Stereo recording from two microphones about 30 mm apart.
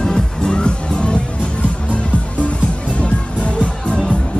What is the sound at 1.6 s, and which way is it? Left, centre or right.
Music, left.